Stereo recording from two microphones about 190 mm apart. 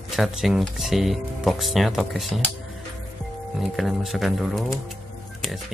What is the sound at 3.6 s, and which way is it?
Speech, centre (ahead or behind).